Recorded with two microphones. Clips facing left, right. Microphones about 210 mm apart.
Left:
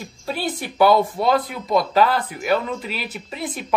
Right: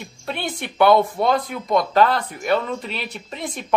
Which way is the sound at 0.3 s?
5° left (ahead or behind).